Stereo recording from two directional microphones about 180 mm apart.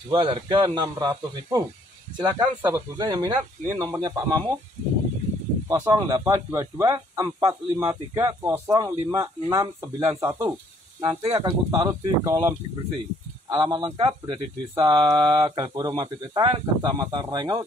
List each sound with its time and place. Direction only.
0.1 s speech: 25° right (ahead or behind)
5.7 s speech: 20° right (ahead or behind)